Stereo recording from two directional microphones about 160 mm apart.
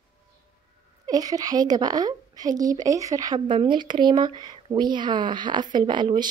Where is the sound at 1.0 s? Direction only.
25° right (ahead or behind).